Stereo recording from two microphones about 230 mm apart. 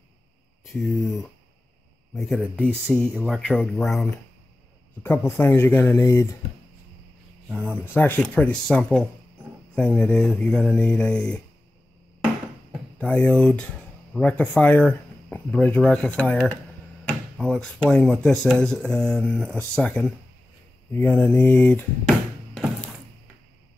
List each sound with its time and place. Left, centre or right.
0.7 s speech: centre
2.1 s speech: centre
2.7 s speech: centre
3.3 s speech: centre
7.5 s speech: centre
13.0 s speech: centre